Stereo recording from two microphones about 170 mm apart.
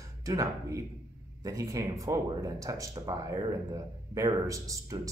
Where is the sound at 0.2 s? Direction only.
20° right (ahead or behind).